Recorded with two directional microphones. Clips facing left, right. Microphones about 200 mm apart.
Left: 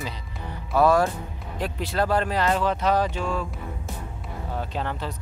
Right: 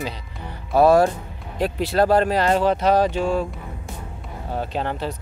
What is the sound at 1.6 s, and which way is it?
Speech, 80° right.